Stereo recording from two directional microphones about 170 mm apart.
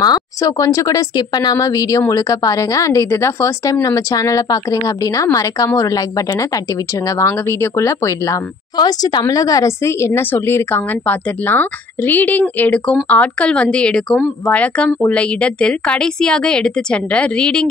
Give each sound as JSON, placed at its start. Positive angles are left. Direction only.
{"t": 0.0, "sound": "a woman's voice", "side_deg": 20}